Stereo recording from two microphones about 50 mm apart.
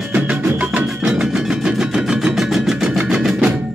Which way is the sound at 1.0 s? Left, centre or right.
Centre.